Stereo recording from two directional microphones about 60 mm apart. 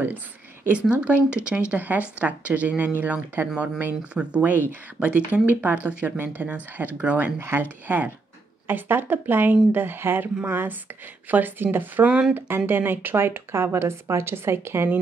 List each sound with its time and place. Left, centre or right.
0.7 s a woman's voice: right
6.1 s a woman's voice: right
7.3 s a woman's voice: right
7.6 s a woman's voice: right
12.1 s speech: centre
12.4 s speech: right